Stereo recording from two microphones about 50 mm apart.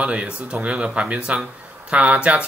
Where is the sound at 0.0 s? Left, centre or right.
Right.